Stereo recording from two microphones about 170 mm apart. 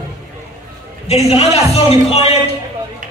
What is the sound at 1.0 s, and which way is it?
A man's voice, 40° left (ahead or behind).